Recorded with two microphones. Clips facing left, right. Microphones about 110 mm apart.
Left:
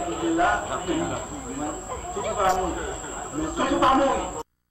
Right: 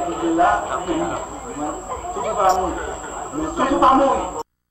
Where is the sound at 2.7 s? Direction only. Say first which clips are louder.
Right 4 dB; 45° right (ahead or behind).